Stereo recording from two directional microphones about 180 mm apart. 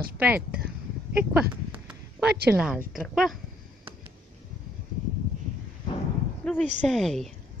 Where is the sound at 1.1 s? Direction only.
10° right (ahead or behind).